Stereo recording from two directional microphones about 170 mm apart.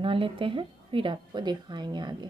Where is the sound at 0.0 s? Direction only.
30° right (ahead or behind).